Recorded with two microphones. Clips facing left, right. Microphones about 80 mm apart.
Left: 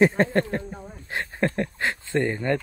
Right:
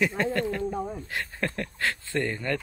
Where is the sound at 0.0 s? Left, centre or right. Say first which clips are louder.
Left 6 dB; left.